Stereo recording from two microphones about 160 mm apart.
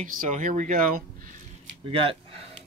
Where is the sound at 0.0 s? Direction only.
55° right (ahead or behind).